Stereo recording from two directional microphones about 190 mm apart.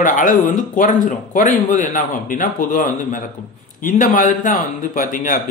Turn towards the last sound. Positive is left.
turn(degrees=45)  # may be behind; listen again after turning